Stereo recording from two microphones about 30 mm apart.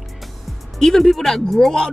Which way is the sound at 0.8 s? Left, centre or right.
Centre.